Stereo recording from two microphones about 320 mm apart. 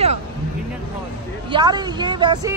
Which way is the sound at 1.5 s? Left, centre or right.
Centre.